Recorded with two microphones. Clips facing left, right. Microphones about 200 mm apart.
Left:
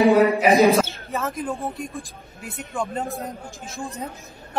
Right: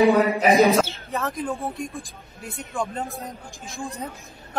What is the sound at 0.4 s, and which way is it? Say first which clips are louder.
Speech: left 1 dB; centre (ahead or behind).